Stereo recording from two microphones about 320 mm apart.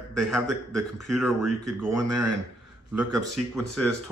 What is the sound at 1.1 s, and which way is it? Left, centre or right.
Speech, centre.